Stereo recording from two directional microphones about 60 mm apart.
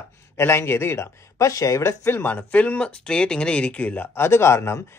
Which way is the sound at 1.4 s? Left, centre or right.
Left.